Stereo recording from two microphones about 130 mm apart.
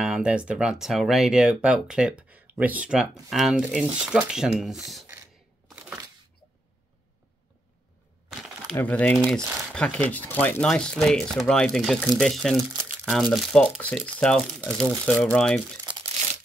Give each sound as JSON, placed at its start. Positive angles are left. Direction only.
{"t": 0.0, "sound": "speech", "side_deg": -5}
{"t": 8.7, "sound": "speech", "side_deg": 10}
{"t": 15.9, "sound": "crumpling", "side_deg": -40}